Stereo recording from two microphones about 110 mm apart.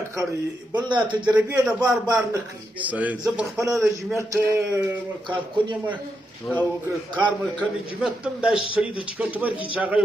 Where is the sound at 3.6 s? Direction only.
30° right (ahead or behind).